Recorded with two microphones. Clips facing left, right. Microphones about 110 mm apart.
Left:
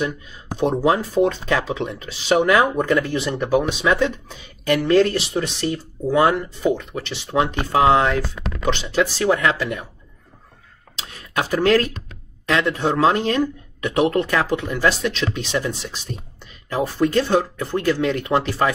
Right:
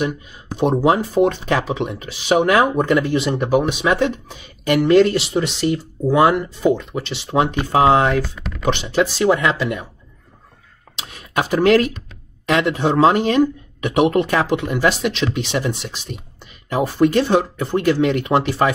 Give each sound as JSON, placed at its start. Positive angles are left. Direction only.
{"t": 0.7, "sound": "speech", "side_deg": -15}
{"t": 11.0, "sound": "a sound", "side_deg": -25}
{"t": 12.4, "sound": "speech", "side_deg": -20}